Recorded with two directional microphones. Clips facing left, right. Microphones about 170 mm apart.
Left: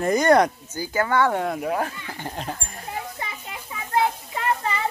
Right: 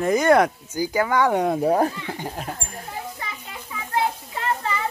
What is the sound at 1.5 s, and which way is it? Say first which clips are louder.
Speech: right 6 dB; 35° right (ahead or behind).